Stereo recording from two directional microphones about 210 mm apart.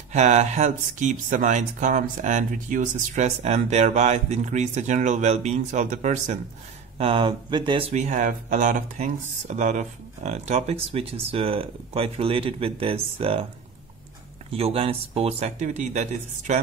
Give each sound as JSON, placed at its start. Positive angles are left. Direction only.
{"t": 0.1, "sound": "speech", "side_deg": -35}
{"t": 14.5, "sound": "speech", "side_deg": -25}